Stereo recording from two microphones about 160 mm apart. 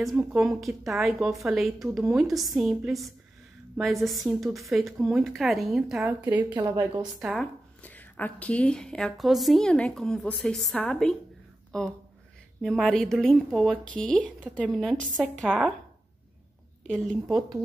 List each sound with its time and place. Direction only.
0.1 s a woman's voice: 10° right (ahead or behind)
6.5 s a woman's voice: 25° right (ahead or behind)
7.2 s a woman's voice: 5° right (ahead or behind)
7.8 s a woman's voice: 10° left (ahead or behind)
16.8 s a woman's voice: 5° left (ahead or behind)